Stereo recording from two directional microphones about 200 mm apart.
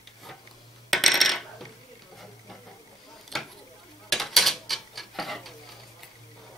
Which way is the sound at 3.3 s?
Centre (ahead or behind).